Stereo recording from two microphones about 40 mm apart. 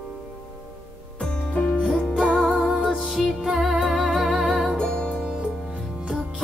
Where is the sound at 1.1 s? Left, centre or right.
Left.